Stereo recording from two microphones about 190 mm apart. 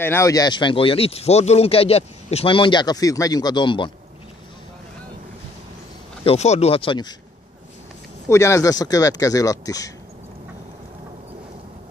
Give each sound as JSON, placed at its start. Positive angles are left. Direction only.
{"t": 0.0, "sound": "speech", "side_deg": 15}
{"t": 6.2, "sound": "speech", "side_deg": 35}
{"t": 8.3, "sound": "speech", "side_deg": 15}